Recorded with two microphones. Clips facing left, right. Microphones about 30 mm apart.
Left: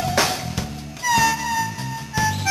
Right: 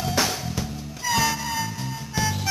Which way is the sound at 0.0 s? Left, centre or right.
Left.